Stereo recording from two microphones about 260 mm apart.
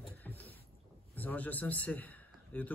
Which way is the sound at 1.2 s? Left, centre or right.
Centre.